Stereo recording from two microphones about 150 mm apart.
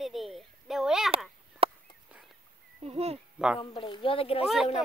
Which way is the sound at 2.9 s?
45° right (ahead or behind).